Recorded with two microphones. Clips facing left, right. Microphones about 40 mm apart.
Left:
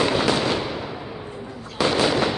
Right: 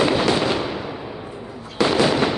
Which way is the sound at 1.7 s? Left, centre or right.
Centre.